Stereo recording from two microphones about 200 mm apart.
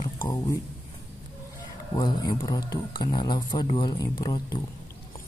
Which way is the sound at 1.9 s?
20° left (ahead or behind).